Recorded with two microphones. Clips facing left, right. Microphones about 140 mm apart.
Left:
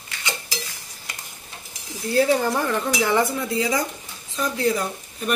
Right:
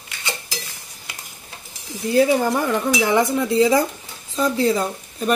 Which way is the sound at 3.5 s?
30° right (ahead or behind).